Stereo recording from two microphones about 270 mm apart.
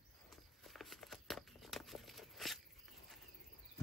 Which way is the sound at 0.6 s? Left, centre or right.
Centre.